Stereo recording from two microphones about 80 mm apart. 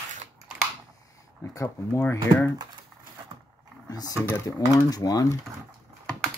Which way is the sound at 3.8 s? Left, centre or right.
Left.